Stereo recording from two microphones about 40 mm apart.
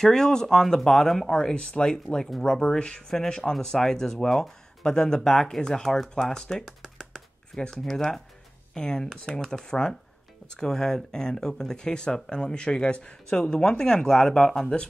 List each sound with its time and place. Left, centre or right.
0.0 s speech: centre
1.3 s speech: left
2.0 s speech: centre
6.6 s a sound: centre
7.7 s speech: centre